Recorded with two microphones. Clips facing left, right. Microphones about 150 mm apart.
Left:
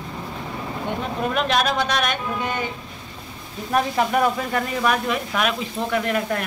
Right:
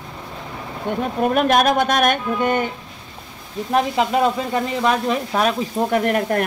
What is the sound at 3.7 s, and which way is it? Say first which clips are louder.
Speech: right 2 dB; 25° right (ahead or behind).